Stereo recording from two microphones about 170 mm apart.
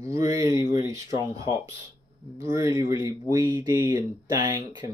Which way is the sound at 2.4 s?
20° right (ahead or behind).